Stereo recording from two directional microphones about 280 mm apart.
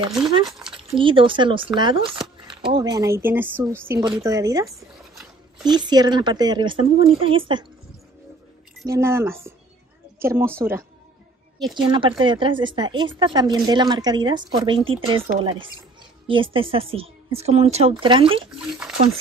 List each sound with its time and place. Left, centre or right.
0.1 s speech: centre
0.5 s a sound: centre
0.9 s speech: centre
5.1 s dog: centre
5.7 s speech: centre
8.8 s a woman's voice: centre
18.5 s speech: centre